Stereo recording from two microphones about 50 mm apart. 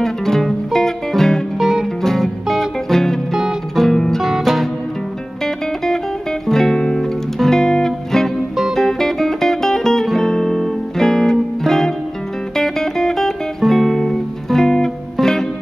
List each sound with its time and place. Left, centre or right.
0.0 s music: centre
6.4 s music: centre